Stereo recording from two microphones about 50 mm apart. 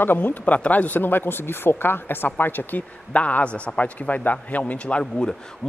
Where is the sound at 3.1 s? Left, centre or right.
Left.